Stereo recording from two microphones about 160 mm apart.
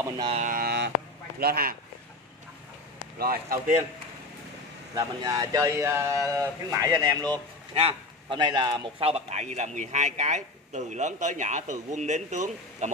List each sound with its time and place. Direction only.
0.3 s speech: 55° right (ahead or behind); by 0.9 s 85° right
1.4 s speech: 70° right (ahead or behind)
3.2 s speech: 65° right (ahead or behind)
4.9 s a man's voice: 20° right (ahead or behind); by 12.9 s 50° right (ahead or behind)